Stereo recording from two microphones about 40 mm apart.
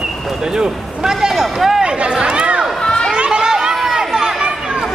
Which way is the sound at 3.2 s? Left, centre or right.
Right.